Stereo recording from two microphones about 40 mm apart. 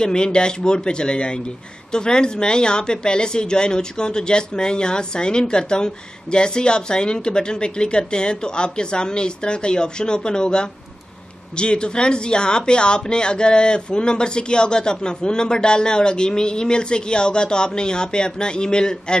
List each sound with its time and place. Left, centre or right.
0.0 s speech: left